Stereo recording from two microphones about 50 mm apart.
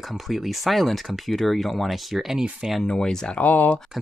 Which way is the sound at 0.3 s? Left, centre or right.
Centre.